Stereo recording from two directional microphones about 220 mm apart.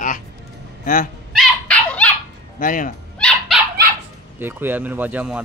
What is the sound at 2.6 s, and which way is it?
Speech, 35° left (ahead or behind).